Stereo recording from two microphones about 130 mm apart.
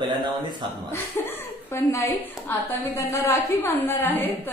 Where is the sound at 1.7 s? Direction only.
20° left (ahead or behind).